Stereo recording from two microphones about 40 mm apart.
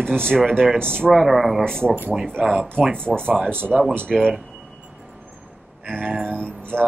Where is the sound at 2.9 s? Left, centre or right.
Right.